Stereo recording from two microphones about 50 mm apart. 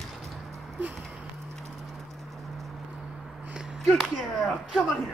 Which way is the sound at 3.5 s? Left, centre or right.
Centre.